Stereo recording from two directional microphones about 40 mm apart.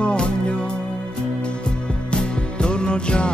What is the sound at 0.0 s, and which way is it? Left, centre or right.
Music, left.